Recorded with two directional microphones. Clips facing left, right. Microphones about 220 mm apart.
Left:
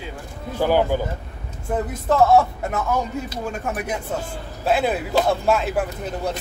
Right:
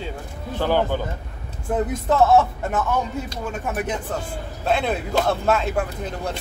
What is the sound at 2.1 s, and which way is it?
Speech, centre (ahead or behind).